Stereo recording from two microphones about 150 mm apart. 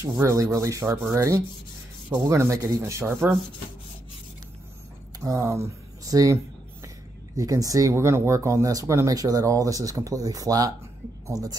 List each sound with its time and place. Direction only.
0.0 s speech: 20° right (ahead or behind)
5.2 s speech: 20° right (ahead or behind)